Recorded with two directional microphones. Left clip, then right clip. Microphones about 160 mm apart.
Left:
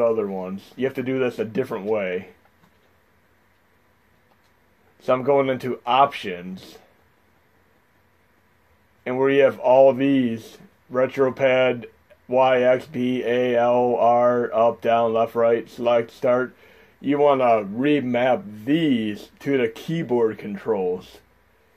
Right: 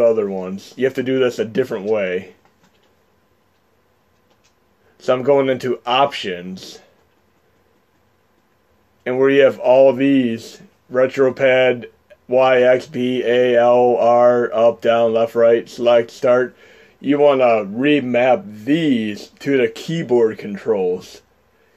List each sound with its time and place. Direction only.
0.0 s speech: 25° right (ahead or behind)
4.9 s speech: 25° right (ahead or behind)
9.0 s speech: 20° right (ahead or behind)